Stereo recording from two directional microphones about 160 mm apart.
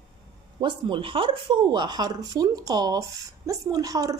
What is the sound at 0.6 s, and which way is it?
Speech, 30° right (ahead or behind).